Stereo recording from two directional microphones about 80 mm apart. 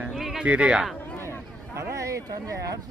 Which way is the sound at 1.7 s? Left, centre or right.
Right.